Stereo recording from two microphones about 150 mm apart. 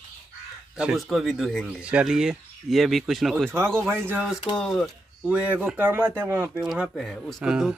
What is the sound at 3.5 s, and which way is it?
Speech, 15° right (ahead or behind).